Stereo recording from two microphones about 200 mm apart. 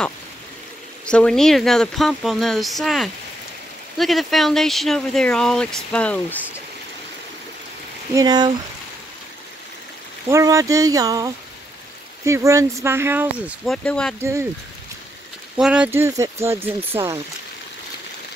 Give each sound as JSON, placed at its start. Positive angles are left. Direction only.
{"t": 1.0, "sound": "speech", "side_deg": 5}
{"t": 8.1, "sound": "speech", "side_deg": -20}
{"t": 10.2, "sound": "speech", "side_deg": -15}
{"t": 13.7, "sound": "speech", "side_deg": 5}
{"t": 14.2, "sound": "speech", "side_deg": -15}
{"t": 15.5, "sound": "speech", "side_deg": -5}